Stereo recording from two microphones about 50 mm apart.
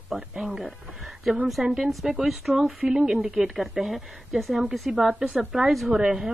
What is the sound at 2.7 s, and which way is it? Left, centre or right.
A woman's voice, centre.